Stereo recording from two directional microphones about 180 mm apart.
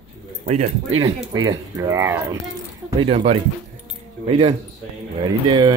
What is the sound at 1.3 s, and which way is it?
Speech, 20° right (ahead or behind).